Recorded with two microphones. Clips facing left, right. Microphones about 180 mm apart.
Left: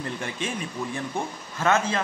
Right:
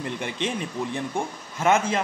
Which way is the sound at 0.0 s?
20° right (ahead or behind).